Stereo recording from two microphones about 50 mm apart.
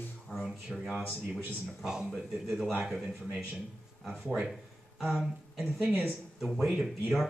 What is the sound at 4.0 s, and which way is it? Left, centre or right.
A man's voice, centre.